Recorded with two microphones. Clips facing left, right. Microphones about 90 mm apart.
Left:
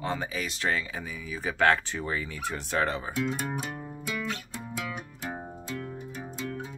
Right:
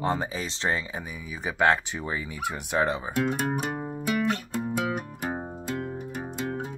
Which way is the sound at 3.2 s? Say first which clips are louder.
Right 4 dB; 50° right (ahead or behind).